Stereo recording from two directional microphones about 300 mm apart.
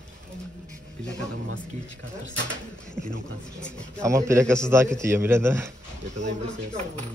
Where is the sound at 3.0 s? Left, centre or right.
Right.